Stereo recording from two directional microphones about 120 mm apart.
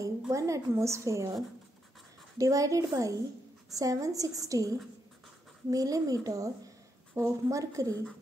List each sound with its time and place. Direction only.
0.3 s a woman's voice: 25° right (ahead or behind)